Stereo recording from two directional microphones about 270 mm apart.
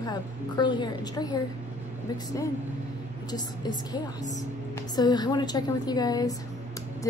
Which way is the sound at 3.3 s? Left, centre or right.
Centre.